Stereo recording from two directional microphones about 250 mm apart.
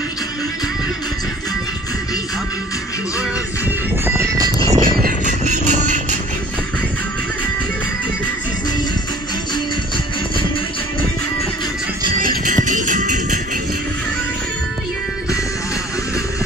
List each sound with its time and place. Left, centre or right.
3.2 s music: centre
4.6 s music: right
12.2 s music: right